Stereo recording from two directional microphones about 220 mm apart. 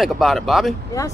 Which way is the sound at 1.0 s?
15° left (ahead or behind).